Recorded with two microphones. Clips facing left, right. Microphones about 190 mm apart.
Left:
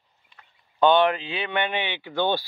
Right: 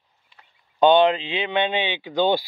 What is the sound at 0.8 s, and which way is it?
Speech, 20° right (ahead or behind).